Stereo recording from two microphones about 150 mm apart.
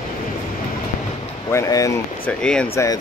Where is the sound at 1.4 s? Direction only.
20° left (ahead or behind).